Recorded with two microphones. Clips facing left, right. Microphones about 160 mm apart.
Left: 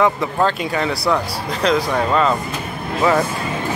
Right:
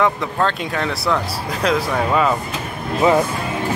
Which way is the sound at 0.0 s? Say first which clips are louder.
Left 2 dB; 5° left (ahead or behind).